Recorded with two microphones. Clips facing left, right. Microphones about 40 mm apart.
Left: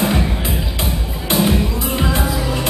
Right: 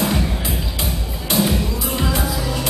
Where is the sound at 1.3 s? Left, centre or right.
Centre.